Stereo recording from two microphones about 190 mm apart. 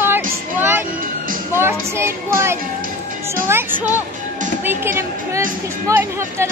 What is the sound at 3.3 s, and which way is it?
Speech, 10° right (ahead or behind).